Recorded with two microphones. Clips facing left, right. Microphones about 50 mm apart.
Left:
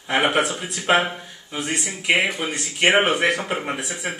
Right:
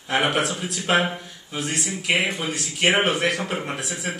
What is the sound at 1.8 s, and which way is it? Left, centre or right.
Speech, centre.